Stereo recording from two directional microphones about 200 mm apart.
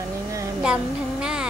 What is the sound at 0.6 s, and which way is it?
Speech, 5° right (ahead or behind).